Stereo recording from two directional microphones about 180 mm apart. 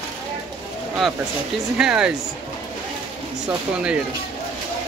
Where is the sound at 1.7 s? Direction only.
5° right (ahead or behind).